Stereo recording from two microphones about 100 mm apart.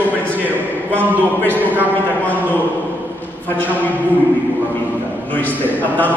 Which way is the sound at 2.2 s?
20° left (ahead or behind).